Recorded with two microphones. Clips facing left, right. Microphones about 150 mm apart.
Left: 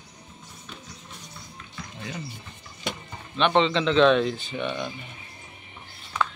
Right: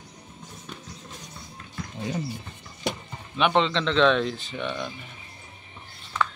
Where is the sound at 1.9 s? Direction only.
35° right (ahead or behind).